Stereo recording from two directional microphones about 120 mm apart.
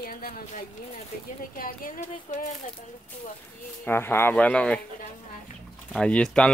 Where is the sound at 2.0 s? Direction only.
75° left (ahead or behind).